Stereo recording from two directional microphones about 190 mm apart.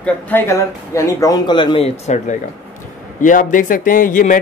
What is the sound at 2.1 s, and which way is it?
Speech, 40° left (ahead or behind).